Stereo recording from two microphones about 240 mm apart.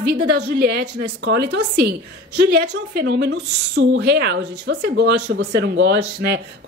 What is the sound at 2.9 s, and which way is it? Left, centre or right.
Speech, right.